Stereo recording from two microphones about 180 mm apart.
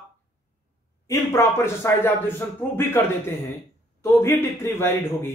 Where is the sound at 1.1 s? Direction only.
15° left (ahead or behind).